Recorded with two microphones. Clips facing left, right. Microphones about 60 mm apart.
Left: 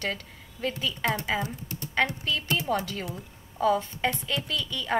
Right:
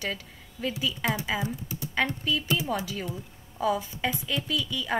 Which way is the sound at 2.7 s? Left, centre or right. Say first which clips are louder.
Left 2 dB; centre.